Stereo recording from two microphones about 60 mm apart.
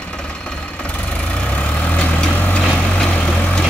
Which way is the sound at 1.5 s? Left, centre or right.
Left.